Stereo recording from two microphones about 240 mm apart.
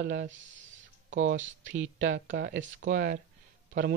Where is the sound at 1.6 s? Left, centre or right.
Right.